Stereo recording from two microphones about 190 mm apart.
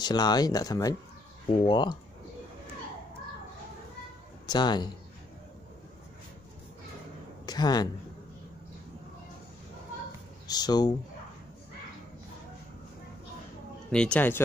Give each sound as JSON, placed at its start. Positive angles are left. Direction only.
{"t": 0.0, "sound": "speech", "side_deg": 20}
{"t": 4.5, "sound": "speech", "side_deg": 20}
{"t": 7.4, "sound": "speech", "side_deg": 20}
{"t": 10.4, "sound": "speech", "side_deg": 20}
{"t": 13.9, "sound": "speech", "side_deg": 5}